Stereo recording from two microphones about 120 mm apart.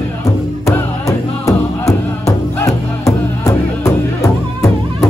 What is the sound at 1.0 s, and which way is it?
Music, 25° left (ahead or behind).